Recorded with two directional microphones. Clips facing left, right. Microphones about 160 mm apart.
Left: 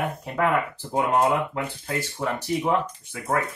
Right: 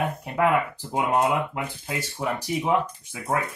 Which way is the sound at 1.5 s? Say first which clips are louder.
Left 2 dB; 10° right (ahead or behind).